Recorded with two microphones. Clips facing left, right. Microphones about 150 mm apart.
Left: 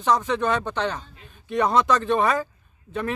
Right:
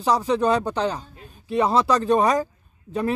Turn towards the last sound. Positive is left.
turn(degrees=-35)  # may be behind; listen again after turning